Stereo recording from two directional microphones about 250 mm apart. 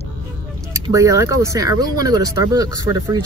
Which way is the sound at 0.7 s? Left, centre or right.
Centre.